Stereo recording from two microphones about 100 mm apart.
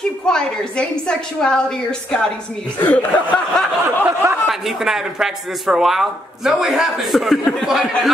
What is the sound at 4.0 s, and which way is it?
Speech, 25° right (ahead or behind).